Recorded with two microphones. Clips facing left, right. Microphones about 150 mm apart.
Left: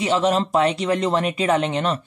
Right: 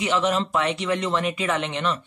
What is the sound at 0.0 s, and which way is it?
Speech, 35° left (ahead or behind).